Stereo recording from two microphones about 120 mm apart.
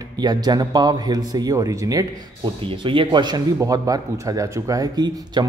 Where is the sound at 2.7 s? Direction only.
45° right (ahead or behind).